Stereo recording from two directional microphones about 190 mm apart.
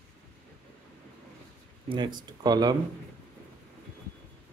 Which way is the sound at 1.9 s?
25° right (ahead or behind).